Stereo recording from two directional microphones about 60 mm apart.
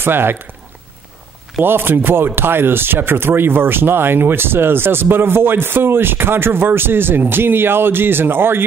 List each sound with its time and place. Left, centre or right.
0.0 s speech: right
1.6 s speech: right